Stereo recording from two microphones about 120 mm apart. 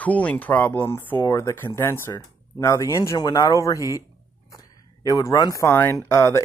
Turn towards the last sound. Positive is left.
turn(degrees=25)  # may be behind; listen again after turning